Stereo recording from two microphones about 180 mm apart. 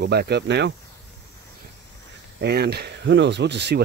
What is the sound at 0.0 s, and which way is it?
Speech, 60° right (ahead or behind).